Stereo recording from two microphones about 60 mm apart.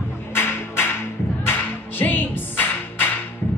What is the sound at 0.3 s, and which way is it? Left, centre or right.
Music, left.